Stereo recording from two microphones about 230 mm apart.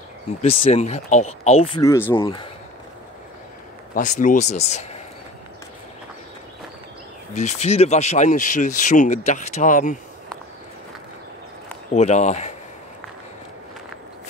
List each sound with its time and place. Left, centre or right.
0.4 s speech: left
1.8 s speech: centre
3.9 s speech: left
7.3 s speech: left
11.9 s speech: left